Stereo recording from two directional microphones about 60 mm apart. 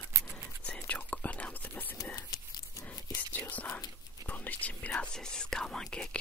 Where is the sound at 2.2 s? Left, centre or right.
Left.